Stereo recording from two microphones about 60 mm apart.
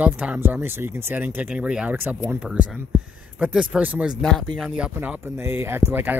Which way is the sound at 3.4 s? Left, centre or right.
Right.